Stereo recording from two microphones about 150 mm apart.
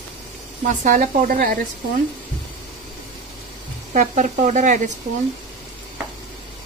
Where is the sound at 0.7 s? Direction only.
65° right (ahead or behind).